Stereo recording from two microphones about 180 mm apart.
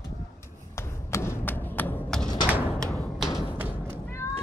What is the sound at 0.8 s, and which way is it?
Thump, 15° left (ahead or behind).